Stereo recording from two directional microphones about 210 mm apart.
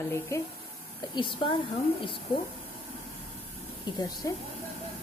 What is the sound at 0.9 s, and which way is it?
A woman's voice, 25° left (ahead or behind).